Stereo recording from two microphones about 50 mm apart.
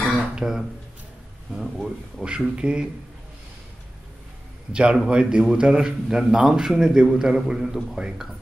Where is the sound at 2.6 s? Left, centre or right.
Right.